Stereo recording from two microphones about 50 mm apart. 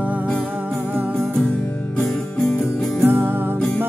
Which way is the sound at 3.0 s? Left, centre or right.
Right.